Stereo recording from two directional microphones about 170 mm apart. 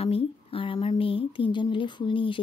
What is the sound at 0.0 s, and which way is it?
Speech, 35° left (ahead or behind).